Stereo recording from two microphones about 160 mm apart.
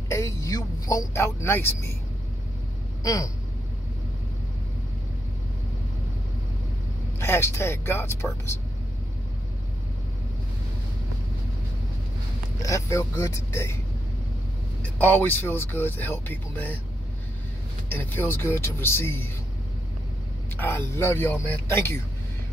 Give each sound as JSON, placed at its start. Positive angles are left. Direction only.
{"t": 0.1, "sound": "vehicle", "side_deg": 20}
{"t": 3.0, "sound": "speech", "side_deg": 20}
{"t": 7.2, "sound": "speech", "side_deg": 15}
{"t": 12.6, "sound": "speech", "side_deg": 20}
{"t": 15.0, "sound": "speech", "side_deg": 10}
{"t": 17.8, "sound": "speech", "side_deg": 10}
{"t": 20.5, "sound": "speech", "side_deg": 15}